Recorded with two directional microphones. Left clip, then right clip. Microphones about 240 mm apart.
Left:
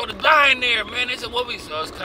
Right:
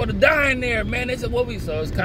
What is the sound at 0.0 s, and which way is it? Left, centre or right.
A man's voice, left.